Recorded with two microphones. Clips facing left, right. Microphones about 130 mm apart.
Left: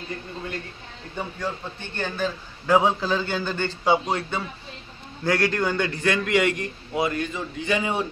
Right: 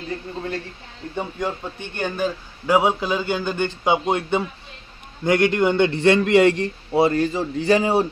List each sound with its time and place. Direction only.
1.1 s a man's voice: 15° right (ahead or behind); by 8.1 s 35° right (ahead or behind)